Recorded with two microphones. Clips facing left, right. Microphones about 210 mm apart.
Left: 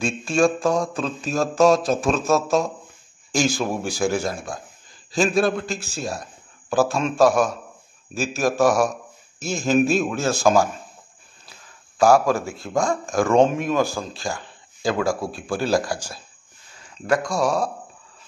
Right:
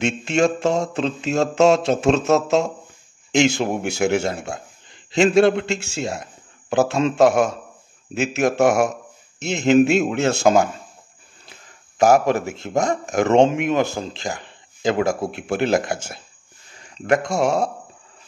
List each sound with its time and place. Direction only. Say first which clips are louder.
0.0 s a man's voice: right 1 dB; 20° right (ahead or behind)
12.0 s a man's voice: right 1 dB; 20° right (ahead or behind)